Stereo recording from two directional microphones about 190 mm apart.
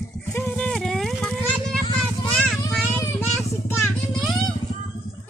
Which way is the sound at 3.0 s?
10° left (ahead or behind).